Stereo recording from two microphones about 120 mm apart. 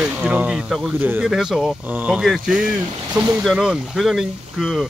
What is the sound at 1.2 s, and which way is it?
Speech, centre (ahead or behind).